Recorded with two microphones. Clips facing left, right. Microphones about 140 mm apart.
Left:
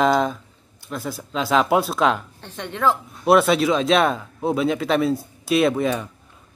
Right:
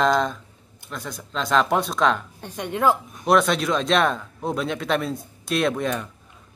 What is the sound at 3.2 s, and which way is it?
Speech, 5° left (ahead or behind).